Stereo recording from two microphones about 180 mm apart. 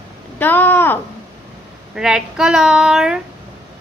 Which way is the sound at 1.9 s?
5° right (ahead or behind).